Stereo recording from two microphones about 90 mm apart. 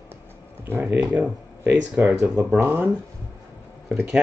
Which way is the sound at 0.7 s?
25° right (ahead or behind).